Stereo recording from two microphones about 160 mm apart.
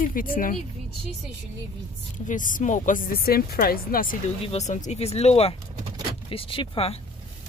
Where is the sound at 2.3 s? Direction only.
55° left (ahead or behind).